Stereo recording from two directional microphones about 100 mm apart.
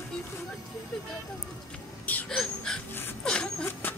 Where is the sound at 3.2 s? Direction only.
10° left (ahead or behind).